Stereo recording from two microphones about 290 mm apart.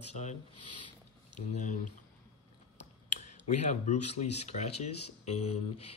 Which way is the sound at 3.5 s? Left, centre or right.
Left.